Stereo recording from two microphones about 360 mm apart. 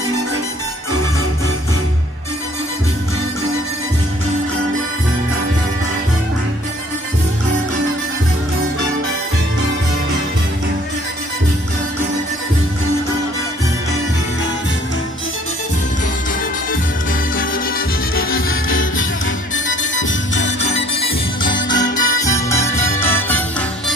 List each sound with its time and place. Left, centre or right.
17.4 s music: left
21.4 s music: centre